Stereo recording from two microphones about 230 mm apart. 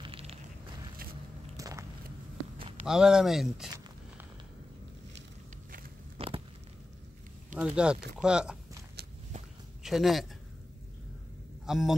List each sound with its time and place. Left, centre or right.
0.0 s a sound: right
1.6 s biting: centre
2.9 s speech: centre
6.1 s a sound: right
7.5 s speech: centre
9.8 s speech: centre
11.6 s a man's voice: centre